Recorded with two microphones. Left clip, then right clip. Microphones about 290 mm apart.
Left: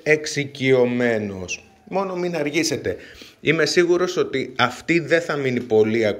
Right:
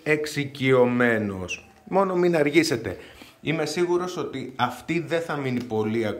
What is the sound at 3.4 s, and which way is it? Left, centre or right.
A man's voice, centre.